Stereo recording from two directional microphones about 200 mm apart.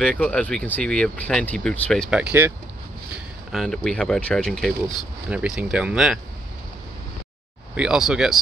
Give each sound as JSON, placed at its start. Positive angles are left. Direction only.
{"t": 0.0, "sound": "speech", "side_deg": 5}
{"t": 3.5, "sound": "speech", "side_deg": 0}
{"t": 7.7, "sound": "speech", "side_deg": -5}